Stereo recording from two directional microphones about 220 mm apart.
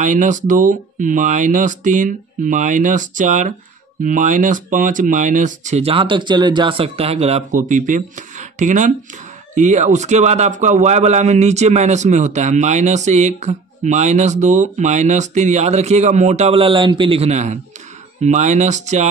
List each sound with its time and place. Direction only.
0.0 s a man's voice: 35° right (ahead or behind)